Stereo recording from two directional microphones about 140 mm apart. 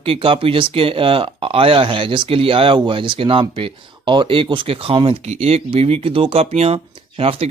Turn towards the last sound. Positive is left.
turn(degrees=-45)  # may be behind; listen again after turning